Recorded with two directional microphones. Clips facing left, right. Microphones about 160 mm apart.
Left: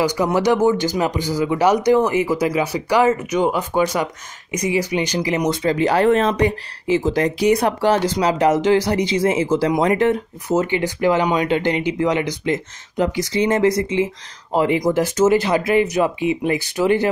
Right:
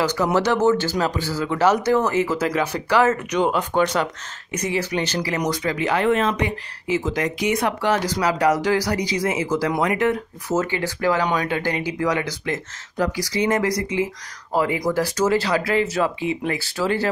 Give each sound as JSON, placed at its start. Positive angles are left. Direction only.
{"t": 0.0, "sound": "speech", "side_deg": 15}
{"t": 10.5, "sound": "speech", "side_deg": 20}